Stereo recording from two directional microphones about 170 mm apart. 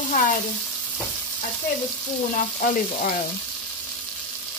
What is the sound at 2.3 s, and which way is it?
Speech, 50° left (ahead or behind).